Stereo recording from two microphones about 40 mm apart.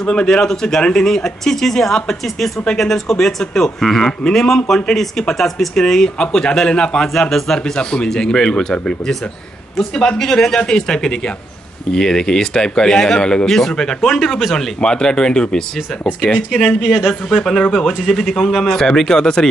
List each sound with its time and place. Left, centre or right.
0.0 s speech: left; by 14.7 s centre
14.8 s speech: centre
16.8 s a man's voice: centre
17.1 s speech: centre